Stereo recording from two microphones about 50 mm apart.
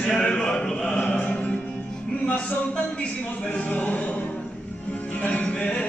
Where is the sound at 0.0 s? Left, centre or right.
Centre.